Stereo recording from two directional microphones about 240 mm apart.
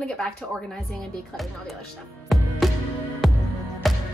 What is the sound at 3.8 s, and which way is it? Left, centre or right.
Music, centre.